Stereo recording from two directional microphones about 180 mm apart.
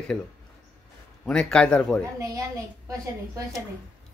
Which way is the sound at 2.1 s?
20° right (ahead or behind).